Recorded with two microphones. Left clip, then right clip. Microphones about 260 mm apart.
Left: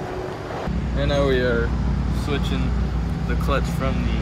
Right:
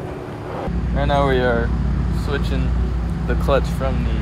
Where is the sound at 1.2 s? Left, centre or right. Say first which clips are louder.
Right 1 dB; right.